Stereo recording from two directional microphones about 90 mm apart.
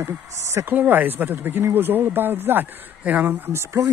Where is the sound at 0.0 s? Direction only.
30° right (ahead or behind).